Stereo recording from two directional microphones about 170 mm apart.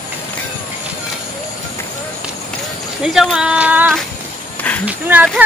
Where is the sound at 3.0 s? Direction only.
Centre (ahead or behind).